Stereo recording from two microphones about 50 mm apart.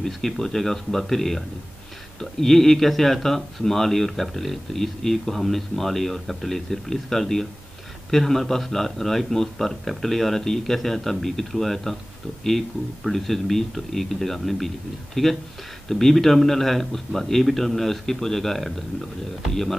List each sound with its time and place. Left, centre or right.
0.0 s speech: centre